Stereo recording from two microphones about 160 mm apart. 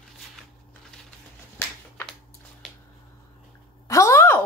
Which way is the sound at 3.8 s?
20° left (ahead or behind).